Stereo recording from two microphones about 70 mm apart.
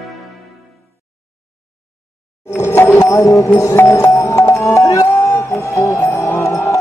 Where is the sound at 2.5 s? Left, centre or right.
Left.